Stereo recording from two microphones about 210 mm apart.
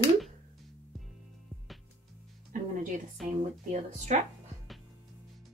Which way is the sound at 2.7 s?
35° right (ahead or behind).